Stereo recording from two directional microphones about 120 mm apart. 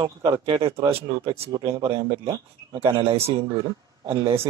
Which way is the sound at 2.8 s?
55° right (ahead or behind).